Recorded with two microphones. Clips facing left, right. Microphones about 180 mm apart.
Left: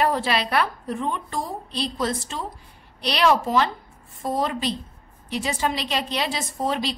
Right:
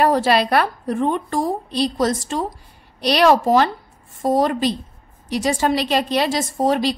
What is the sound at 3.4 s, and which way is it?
A woman's voice, 45° right (ahead or behind).